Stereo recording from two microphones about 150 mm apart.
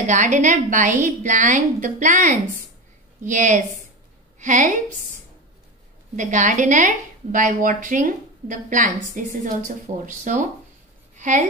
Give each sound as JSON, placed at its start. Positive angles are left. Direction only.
{"t": 0.0, "sound": "a woman's voice", "side_deg": -55}
{"t": 6.1, "sound": "a woman's voice", "side_deg": -55}